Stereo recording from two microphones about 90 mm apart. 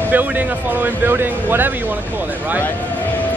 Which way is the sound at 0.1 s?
20° right (ahead or behind).